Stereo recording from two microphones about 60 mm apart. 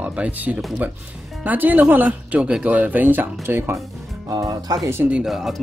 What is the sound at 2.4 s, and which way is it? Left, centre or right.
Speech, centre.